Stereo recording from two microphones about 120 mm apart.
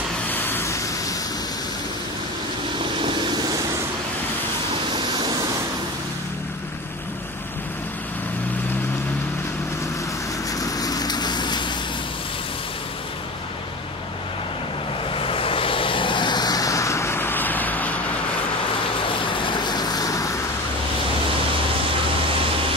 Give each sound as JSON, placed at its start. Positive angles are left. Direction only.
{"t": 0.3, "sound": "vehicle", "side_deg": 15}
{"t": 3.0, "sound": "vehicle", "side_deg": -40}
{"t": 10.5, "sound": "vehicle", "side_deg": 30}
{"t": 15.0, "sound": "vehicle", "side_deg": 50}
{"t": 19.0, "sound": "vehicle", "side_deg": 45}